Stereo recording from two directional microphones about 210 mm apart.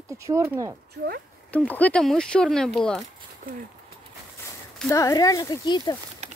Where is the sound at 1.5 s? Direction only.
5° left (ahead or behind).